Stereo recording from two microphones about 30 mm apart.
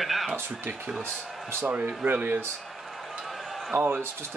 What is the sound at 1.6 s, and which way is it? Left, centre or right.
Speech, right.